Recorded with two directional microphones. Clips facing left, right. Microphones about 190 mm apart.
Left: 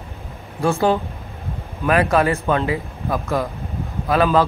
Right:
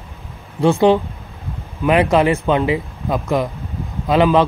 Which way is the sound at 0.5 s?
20° right (ahead or behind).